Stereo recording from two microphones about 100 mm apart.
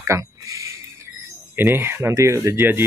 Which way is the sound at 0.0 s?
30° right (ahead or behind).